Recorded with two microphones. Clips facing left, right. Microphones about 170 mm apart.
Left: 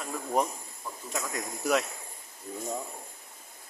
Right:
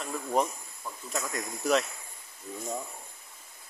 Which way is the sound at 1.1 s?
10° left (ahead or behind).